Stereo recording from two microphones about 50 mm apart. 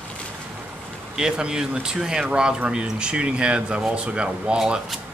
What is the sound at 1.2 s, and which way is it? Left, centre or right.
Speech, centre.